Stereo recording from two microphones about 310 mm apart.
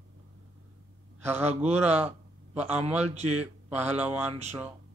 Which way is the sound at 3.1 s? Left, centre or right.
Right.